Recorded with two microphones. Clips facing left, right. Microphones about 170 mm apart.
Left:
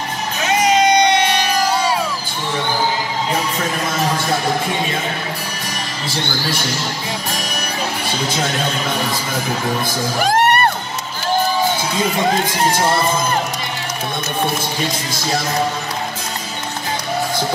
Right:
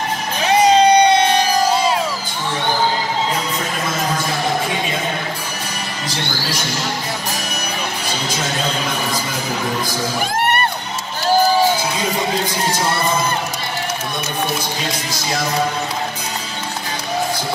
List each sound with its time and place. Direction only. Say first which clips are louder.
0.5 s music: right 3 dB; 30° right (ahead or behind)